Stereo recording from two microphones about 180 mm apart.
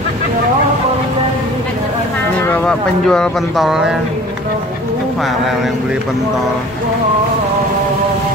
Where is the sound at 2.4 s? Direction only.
10° left (ahead or behind).